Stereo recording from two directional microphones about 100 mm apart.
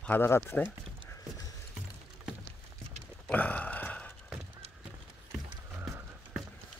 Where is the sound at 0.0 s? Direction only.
20° left (ahead or behind).